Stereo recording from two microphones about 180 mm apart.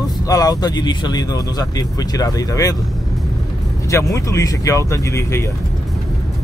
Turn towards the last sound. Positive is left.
turn(degrees=15)  # may be behind; listen again after turning